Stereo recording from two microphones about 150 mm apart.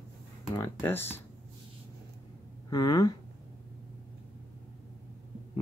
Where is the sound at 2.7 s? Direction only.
25° left (ahead or behind).